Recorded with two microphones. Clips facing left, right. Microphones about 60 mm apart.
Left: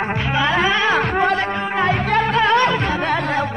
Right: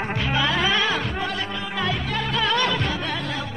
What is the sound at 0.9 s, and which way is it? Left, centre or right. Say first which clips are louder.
Music: left 9 dB; left.